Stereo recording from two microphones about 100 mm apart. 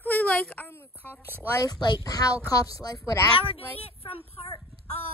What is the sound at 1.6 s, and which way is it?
Speech, 45° left (ahead or behind).